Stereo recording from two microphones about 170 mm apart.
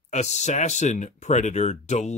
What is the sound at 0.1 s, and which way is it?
Speech, 40° left (ahead or behind).